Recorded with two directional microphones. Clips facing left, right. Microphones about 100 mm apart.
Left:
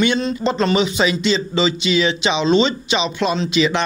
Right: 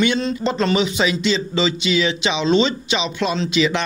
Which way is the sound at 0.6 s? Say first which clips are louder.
Left 1 dB; 30° left (ahead or behind).